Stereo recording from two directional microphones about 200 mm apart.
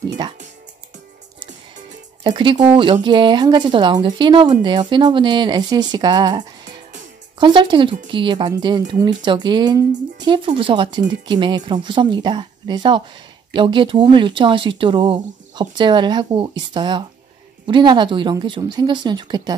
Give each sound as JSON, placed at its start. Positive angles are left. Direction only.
{"t": 0.2, "sound": "speech", "side_deg": -25}
{"t": 2.2, "sound": "speech", "side_deg": -25}